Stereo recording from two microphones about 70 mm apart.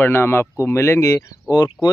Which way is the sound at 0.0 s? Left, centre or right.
Left.